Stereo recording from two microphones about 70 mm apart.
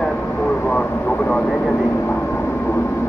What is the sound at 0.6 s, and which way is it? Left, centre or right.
Vehicle, left.